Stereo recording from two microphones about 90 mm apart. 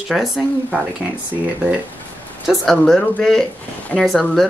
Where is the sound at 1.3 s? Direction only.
15° right (ahead or behind).